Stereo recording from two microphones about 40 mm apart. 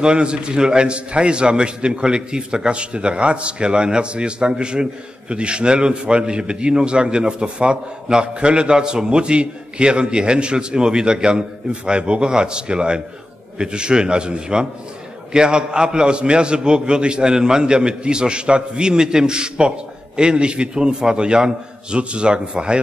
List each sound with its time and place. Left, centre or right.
0.0 s a man's voice: right